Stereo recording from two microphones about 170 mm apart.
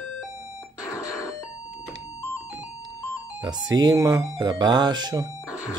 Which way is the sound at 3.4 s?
25° right (ahead or behind).